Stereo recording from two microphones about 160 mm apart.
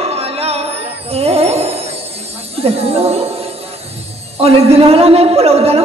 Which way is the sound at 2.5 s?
40° right (ahead or behind).